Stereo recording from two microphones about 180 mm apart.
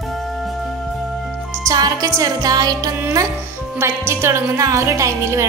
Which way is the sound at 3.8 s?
15° right (ahead or behind).